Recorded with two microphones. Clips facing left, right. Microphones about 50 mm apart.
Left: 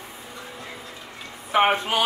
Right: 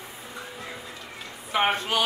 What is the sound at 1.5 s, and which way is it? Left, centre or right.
Speech, left.